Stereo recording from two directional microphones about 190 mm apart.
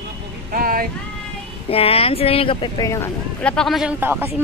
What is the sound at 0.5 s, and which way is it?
Vehicle, 50° right (ahead or behind).